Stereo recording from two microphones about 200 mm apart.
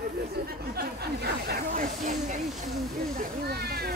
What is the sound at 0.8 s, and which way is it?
Snake, 50° right (ahead or behind).